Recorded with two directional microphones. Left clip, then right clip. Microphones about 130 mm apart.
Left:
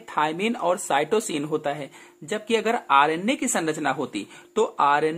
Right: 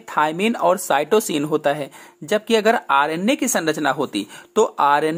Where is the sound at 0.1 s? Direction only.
45° right (ahead or behind).